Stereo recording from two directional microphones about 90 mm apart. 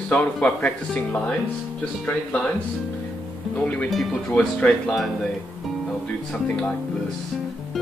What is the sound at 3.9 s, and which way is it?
Speech, centre (ahead or behind).